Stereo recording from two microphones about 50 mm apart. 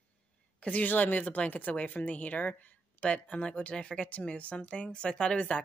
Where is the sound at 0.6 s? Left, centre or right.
Left.